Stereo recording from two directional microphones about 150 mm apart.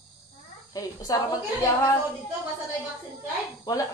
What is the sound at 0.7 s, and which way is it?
Speech, 25° left (ahead or behind).